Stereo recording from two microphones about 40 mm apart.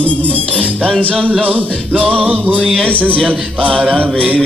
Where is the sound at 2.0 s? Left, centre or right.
Left.